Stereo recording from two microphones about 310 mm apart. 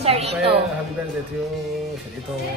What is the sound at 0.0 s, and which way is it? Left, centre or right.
Speech, centre.